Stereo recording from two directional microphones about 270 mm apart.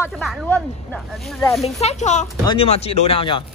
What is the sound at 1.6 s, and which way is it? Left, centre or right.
Speech, left.